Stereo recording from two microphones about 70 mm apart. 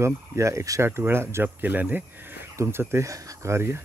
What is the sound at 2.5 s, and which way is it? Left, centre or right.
Speech, right.